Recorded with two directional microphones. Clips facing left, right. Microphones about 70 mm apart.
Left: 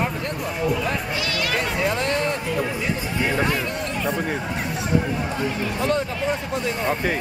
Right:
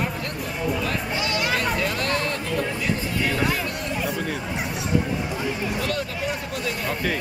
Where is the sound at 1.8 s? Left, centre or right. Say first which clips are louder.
Left 2 dB; left.